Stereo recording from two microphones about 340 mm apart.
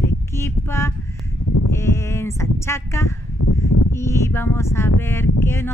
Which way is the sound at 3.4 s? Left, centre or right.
Left.